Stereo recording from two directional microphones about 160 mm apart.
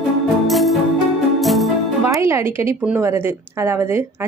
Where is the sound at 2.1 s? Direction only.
15° right (ahead or behind).